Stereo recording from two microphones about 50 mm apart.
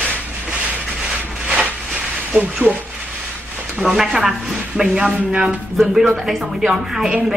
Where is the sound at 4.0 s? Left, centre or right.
Centre.